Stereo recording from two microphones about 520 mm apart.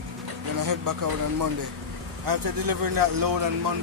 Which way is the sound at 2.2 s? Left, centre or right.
Right.